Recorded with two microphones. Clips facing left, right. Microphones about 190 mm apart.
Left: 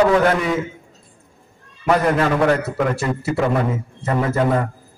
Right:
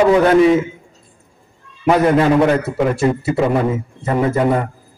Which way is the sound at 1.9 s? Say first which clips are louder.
Right 4 dB; 20° right (ahead or behind).